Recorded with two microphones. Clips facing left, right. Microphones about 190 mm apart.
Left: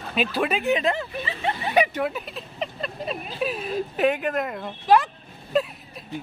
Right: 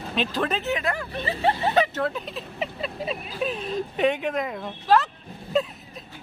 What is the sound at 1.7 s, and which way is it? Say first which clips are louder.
Speech: left 1 dB; 15° left (ahead or behind).